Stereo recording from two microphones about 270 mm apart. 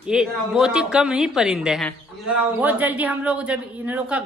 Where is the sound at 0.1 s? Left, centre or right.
Centre.